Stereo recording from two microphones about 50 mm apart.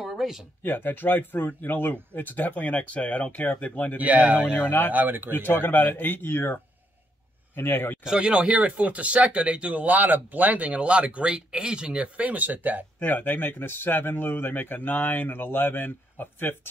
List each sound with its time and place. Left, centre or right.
0.0 s a sound: centre
0.7 s speech: left
4.0 s speech: right
4.6 s speech: left
4.9 s speech: right
5.3 s speech: left
8.0 s speech: centre
8.3 s speech: right
9.8 s speech: right; by 12.1 s centre
12.2 s speech: right
13.0 s speech: left